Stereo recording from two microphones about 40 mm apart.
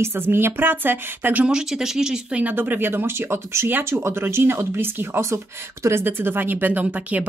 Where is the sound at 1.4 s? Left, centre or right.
Centre.